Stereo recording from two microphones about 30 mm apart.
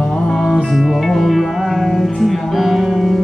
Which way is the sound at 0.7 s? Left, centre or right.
Centre.